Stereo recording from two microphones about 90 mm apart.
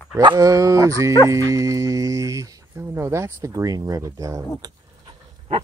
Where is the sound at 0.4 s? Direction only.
40° right (ahead or behind).